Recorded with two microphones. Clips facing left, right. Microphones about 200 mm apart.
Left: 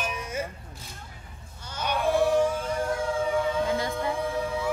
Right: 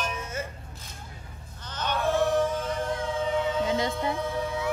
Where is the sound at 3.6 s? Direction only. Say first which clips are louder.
Even; 20° right (ahead or behind).